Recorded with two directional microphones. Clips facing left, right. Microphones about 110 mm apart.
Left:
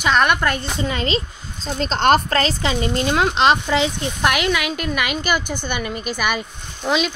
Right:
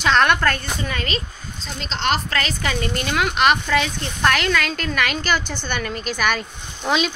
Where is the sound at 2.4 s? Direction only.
30° left (ahead or behind); by 7.1 s centre (ahead or behind).